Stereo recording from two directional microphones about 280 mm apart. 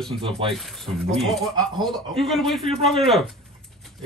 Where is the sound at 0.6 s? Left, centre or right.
Centre.